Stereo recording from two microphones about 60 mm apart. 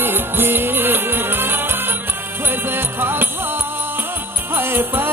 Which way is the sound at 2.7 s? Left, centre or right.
Right.